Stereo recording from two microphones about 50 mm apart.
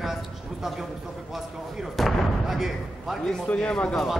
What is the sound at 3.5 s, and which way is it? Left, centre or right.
Speech, centre.